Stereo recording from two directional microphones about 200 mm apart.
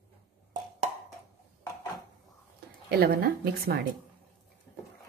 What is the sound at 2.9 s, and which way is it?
Speech, 50° right (ahead or behind).